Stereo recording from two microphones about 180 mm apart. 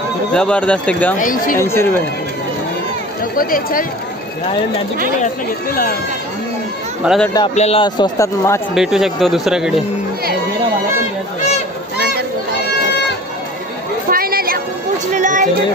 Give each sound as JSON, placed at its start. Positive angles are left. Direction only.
{"t": 0.3, "sound": "speech", "side_deg": 5}
{"t": 1.2, "sound": "speech", "side_deg": 50}
{"t": 1.6, "sound": "speech", "side_deg": 15}
{"t": 3.3, "sound": "speech", "side_deg": 50}
{"t": 5.2, "sound": "speech", "side_deg": 55}
{"t": 7.0, "sound": "speech", "side_deg": -5}
{"t": 7.5, "sound": "speech", "side_deg": 35}
{"t": 8.7, "sound": "speech", "side_deg": 0}
{"t": 14.1, "sound": "a sound", "side_deg": -55}
{"t": 15.1, "sound": "music", "side_deg": -45}